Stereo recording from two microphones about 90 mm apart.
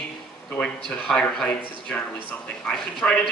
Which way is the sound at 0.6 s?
20° left (ahead or behind).